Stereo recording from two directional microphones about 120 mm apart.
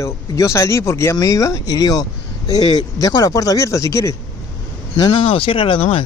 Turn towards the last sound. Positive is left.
turn(degrees=50)  # may be behind; listen again after turning